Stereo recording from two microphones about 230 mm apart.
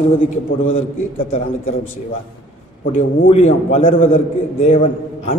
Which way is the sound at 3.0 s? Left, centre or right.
Left.